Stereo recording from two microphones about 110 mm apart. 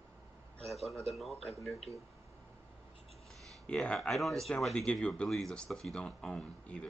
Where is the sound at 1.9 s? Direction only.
30° right (ahead or behind).